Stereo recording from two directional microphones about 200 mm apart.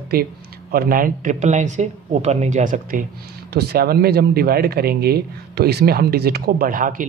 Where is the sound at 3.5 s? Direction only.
55° right (ahead or behind).